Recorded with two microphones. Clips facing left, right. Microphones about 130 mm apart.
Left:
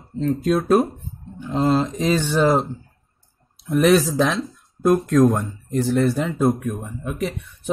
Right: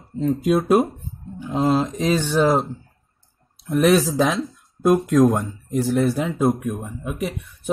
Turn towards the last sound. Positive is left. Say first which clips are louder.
# left 1 dB
turn(degrees=0)  # may be behind; listen again after turning